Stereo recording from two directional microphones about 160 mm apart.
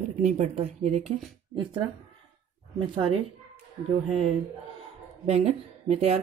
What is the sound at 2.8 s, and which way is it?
Speech, 30° right (ahead or behind).